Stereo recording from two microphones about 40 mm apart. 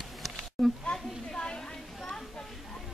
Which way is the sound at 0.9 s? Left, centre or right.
Centre.